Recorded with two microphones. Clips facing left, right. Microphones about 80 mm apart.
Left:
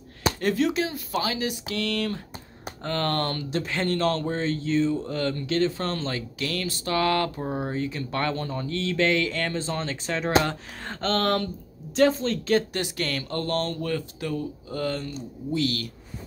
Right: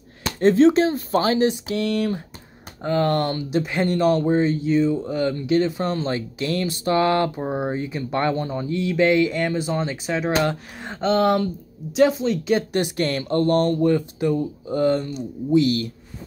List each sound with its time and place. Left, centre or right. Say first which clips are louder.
0.4 s speech: right 11 dB; right
1.7 s speech: right 5 dB; right